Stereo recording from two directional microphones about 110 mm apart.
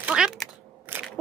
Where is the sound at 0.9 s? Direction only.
20° right (ahead or behind).